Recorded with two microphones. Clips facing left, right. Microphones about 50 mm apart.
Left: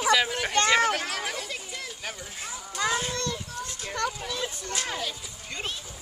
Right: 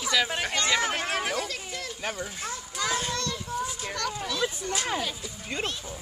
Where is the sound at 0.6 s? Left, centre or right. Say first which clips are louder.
Left 5 dB; left.